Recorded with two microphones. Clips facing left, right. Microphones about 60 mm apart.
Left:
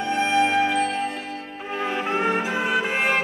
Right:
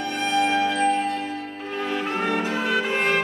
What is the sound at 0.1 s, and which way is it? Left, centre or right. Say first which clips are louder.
Music: left 2 dB; centre.